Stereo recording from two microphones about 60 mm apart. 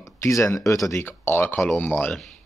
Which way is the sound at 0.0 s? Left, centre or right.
Left.